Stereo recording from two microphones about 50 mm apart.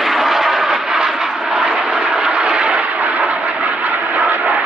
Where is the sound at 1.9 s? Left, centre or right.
Right.